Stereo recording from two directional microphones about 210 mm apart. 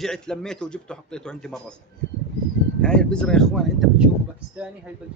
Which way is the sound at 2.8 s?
5° left (ahead or behind).